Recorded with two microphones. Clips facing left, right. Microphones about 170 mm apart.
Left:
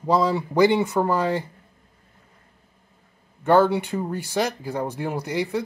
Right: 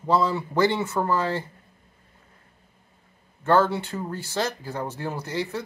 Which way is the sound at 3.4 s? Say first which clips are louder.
Left 3 dB; 15° left (ahead or behind).